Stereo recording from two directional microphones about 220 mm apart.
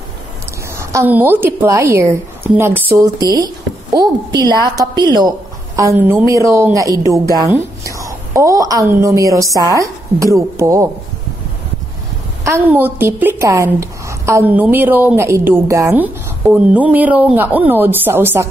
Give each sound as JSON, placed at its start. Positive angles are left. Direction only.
{"t": 0.7, "sound": "a woman's voice", "side_deg": -10}
{"t": 12.4, "sound": "a woman's voice", "side_deg": -10}